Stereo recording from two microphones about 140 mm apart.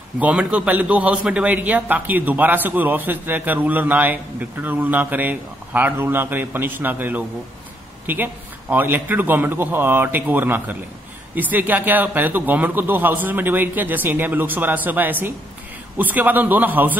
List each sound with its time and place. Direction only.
0.2 s a man's voice: 10° right (ahead or behind)